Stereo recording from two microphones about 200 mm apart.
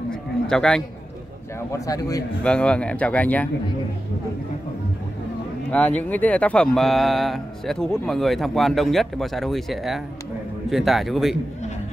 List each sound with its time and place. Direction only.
0.1 s a sound: 5° left (ahead or behind)
1.7 s speech: 15° left (ahead or behind)
2.4 s speech: 5° left (ahead or behind)
5.7 s speech: 5° left (ahead or behind)